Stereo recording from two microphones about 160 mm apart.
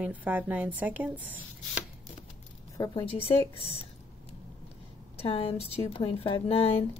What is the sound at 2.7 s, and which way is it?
Speech, 20° left (ahead or behind).